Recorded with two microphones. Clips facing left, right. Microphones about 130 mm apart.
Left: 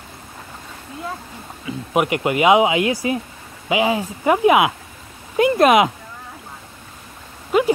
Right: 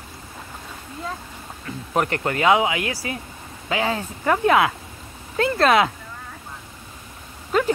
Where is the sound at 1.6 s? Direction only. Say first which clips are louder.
Left 3 dB; 10° left (ahead or behind).